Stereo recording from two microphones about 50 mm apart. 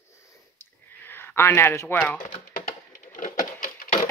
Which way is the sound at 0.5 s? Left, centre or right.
Left.